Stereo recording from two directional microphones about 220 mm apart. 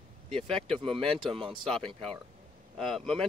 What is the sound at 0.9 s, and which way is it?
Speech, 25° right (ahead or behind).